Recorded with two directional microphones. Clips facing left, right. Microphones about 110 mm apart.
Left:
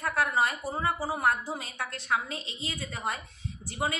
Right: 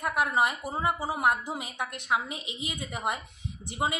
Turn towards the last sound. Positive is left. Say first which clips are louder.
# right 1 dB
turn(degrees=-20)  # may be behind; listen again after turning